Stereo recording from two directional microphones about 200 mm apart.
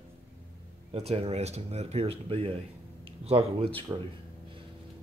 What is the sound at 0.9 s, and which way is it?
Speech, 30° right (ahead or behind).